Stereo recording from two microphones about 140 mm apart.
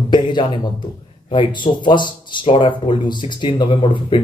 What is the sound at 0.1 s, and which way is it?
A man's voice, 35° left (ahead or behind).